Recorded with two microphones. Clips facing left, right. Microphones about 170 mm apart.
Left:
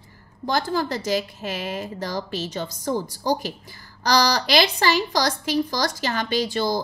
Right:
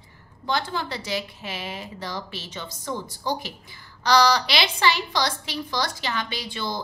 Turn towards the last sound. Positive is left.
turn(degrees=40)  # may be behind; listen again after turning